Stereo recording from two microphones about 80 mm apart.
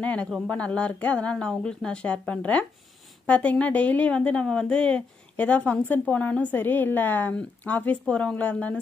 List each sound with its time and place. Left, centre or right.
0.0 s a woman's voice: centre